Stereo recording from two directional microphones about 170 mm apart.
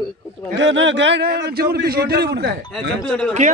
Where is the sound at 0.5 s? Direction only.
90° right; by 2.9 s 75° right (ahead or behind).